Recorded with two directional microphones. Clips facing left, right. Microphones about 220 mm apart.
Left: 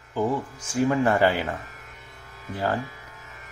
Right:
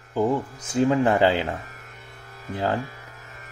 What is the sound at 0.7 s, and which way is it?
Speech, 20° right (ahead or behind).